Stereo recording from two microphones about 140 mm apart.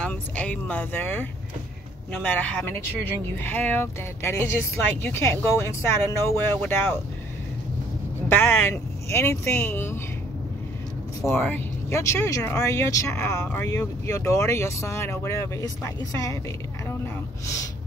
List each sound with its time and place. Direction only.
0.0 s speech: 10° left (ahead or behind)
8.3 s speech: 15° left (ahead or behind)
11.2 s speech: 15° left (ahead or behind)